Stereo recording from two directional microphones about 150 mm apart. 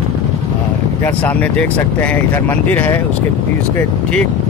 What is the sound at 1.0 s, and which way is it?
Speech, 10° left (ahead or behind).